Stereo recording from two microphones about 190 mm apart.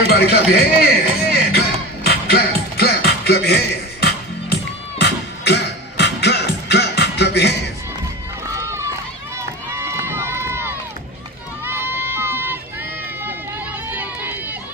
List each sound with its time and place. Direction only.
0.0 s music: 55° left (ahead or behind)
8.5 s run: 15° right (ahead or behind)
11.6 s a sound: 10° right (ahead or behind)
13.8 s run: 10° right (ahead or behind)